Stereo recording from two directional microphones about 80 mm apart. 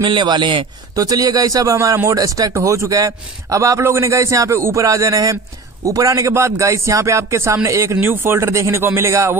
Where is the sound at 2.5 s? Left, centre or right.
Right.